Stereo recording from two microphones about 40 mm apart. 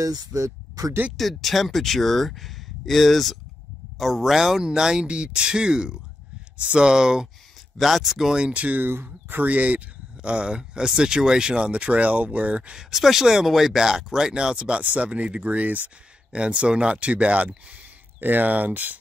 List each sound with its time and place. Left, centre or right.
1.1 s speech: centre
7.7 s speech: centre
8.4 s speech: right
8.8 s speech: right
12.7 s speech: centre; by 14.8 s right
14.8 s speech: right
15.2 s speech: right
16.3 s speech: right
18.2 s speech: right